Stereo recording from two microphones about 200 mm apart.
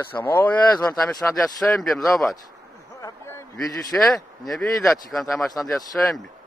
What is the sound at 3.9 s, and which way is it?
Speech, 5° left (ahead or behind).